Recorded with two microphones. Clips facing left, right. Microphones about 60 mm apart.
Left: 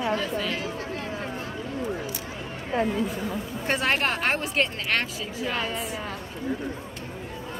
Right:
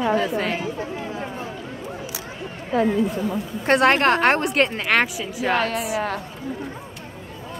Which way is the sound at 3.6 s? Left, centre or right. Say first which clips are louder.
Right 9 dB; right.